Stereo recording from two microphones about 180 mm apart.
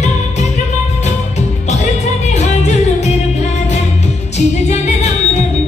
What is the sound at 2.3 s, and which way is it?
Music, 35° left (ahead or behind).